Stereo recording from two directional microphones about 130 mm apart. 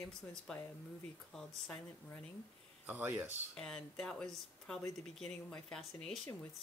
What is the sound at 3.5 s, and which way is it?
Speech, 5° left (ahead or behind).